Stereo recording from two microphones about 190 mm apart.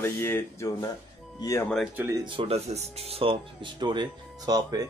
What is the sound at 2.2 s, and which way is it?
Speech, 30° right (ahead or behind).